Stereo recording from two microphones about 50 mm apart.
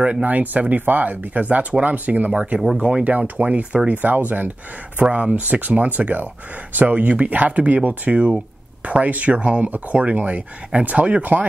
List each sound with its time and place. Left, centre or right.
0.0 s speech: right
3.9 s speech: right